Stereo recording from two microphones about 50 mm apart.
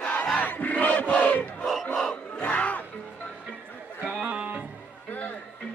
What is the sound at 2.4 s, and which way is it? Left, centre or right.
Music, left.